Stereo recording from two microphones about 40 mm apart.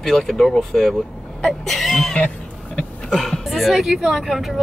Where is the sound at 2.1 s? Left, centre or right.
Left.